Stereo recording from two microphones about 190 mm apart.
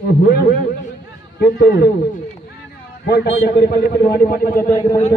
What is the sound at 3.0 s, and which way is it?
A man's voice, 60° left (ahead or behind).